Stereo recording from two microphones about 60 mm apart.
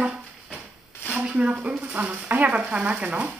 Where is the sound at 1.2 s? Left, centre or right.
Right.